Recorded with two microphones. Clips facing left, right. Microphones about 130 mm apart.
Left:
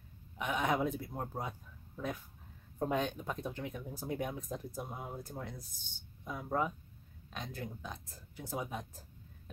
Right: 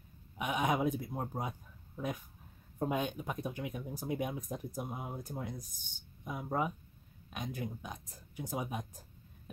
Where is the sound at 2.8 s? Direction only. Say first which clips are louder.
Even; 10° right (ahead or behind).